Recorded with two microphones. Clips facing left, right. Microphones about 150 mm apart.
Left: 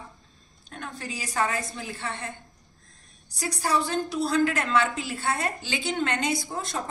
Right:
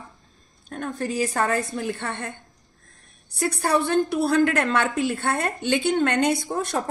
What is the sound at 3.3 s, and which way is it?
A woman's voice, 60° right (ahead or behind).